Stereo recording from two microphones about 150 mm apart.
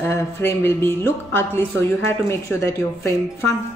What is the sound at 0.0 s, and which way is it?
A woman's voice, 15° left (ahead or behind).